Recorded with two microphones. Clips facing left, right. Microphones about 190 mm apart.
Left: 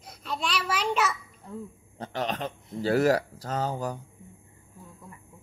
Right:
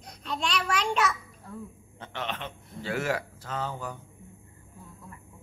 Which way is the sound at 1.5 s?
20° left (ahead or behind).